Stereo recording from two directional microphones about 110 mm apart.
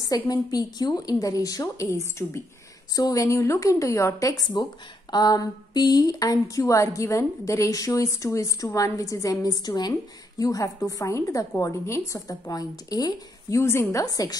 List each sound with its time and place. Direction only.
0.1 s speech: 35° left (ahead or behind)